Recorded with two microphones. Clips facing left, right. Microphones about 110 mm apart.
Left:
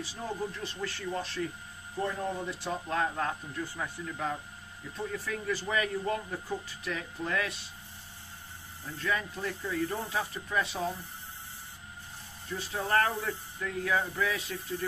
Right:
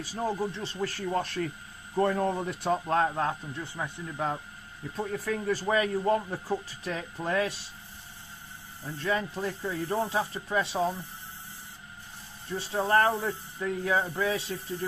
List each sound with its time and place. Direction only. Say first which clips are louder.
0.0 s speech: right 7 dB; 45° right (ahead or behind)
0.4 s speech: right 4 dB; 30° right (ahead or behind); by 2.7 s 55° right (ahead or behind)
2.9 s speech: right 1 dB; 35° right (ahead or behind)
4.9 s speech: right 4 dB; 45° right (ahead or behind)
8.8 s speech: right 3 dB; 30° right (ahead or behind)
12.5 s speech: right 4 dB; 30° right (ahead or behind)